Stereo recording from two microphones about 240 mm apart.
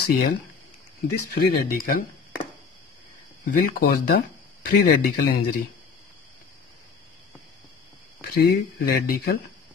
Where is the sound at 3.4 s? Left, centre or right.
Left.